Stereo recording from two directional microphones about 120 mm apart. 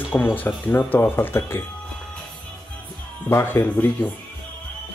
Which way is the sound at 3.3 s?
20° left (ahead or behind).